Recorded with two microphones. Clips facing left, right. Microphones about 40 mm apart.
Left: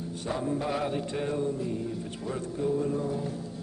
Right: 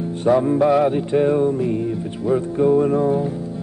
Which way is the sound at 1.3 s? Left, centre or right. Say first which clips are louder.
Right 12 dB; right.